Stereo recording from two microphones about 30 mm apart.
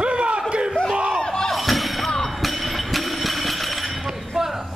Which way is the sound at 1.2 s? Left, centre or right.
Centre.